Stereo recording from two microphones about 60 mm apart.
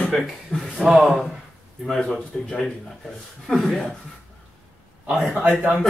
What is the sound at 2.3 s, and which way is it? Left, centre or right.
Speech, centre.